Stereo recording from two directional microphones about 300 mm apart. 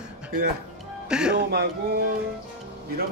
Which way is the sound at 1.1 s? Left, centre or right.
Centre.